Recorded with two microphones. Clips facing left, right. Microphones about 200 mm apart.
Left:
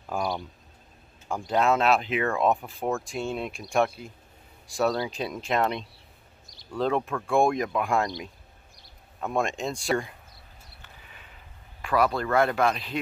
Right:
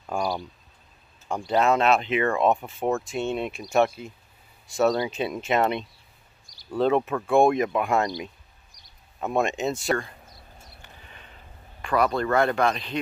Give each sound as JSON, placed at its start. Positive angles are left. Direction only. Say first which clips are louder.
{"t": 0.0, "sound": "speech", "louder": "right 2 dB", "side_deg": 0}
{"t": 6.4, "sound": "a sound", "louder": "left 4 dB", "side_deg": 25}
{"t": 6.7, "sound": "speech", "louder": "right 4 dB", "side_deg": -5}
{"t": 9.2, "sound": "speech", "louder": "right 3 dB", "side_deg": -5}
{"t": 11.8, "sound": "speech", "louder": "right 1 dB", "side_deg": 0}